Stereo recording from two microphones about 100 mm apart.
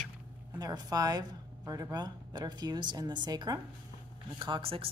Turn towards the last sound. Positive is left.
turn(degrees=-65)  # may be behind; listen again after turning